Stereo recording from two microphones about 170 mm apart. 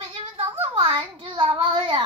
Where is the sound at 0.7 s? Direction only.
30° right (ahead or behind).